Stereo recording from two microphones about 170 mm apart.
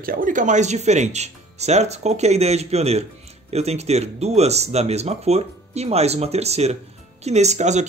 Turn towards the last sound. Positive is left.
turn(degrees=-45)  # may be behind; listen again after turning